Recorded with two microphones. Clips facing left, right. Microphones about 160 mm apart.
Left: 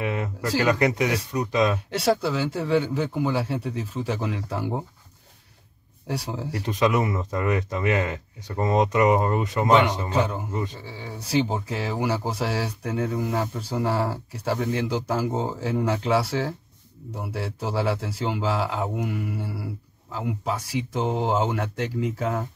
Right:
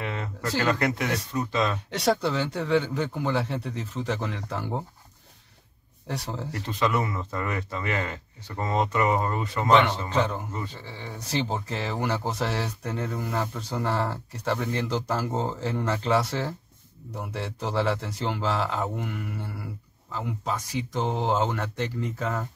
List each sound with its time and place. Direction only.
0.0 s speech: 15° left (ahead or behind)
6.0 s speech: 10° left (ahead or behind)